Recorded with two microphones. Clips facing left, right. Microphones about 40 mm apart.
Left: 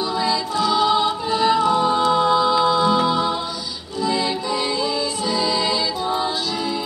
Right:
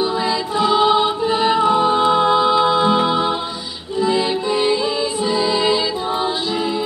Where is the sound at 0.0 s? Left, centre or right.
Right.